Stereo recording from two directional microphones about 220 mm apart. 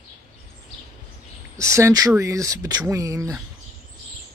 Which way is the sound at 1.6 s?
15° right (ahead or behind).